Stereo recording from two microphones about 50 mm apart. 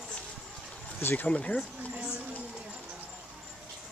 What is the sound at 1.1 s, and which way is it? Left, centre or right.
Speech, left.